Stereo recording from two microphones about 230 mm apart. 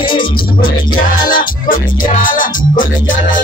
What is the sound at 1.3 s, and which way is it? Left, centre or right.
Music, left.